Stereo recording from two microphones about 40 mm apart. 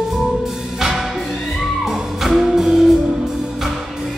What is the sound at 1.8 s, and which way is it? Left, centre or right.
Music, centre.